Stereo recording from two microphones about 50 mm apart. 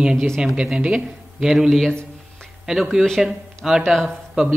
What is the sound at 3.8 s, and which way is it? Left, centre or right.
Speech, centre.